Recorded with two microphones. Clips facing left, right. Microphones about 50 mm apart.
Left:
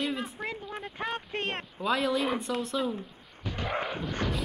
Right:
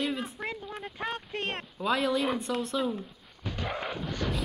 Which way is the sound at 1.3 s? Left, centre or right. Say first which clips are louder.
Left 1 dB; left.